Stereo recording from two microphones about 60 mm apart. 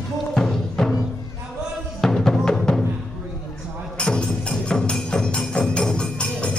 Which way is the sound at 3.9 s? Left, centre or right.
Centre.